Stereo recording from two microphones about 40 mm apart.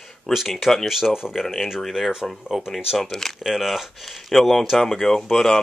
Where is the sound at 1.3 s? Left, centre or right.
Centre.